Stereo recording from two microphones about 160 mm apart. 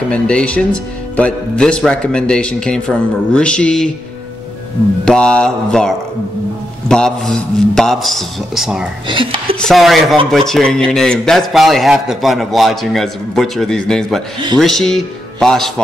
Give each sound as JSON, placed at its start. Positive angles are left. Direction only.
{"t": 0.1, "sound": "a man's voice", "side_deg": 5}
{"t": 5.0, "sound": "a man's voice", "side_deg": 5}
{"t": 9.0, "sound": "speech", "side_deg": -30}
{"t": 9.6, "sound": "a man's voice", "side_deg": 0}